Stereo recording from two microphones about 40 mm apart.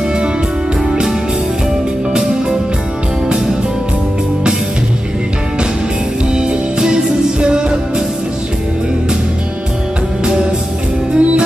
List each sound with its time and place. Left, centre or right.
6.3 s music: centre
10.2 s music: right